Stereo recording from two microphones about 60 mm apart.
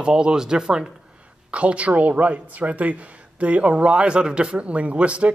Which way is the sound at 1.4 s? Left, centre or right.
Right.